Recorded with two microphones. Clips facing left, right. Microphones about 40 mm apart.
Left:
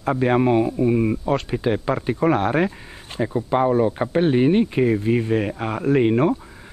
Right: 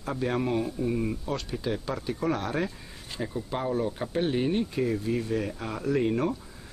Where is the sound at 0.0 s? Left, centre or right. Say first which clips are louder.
Left 10 dB; left.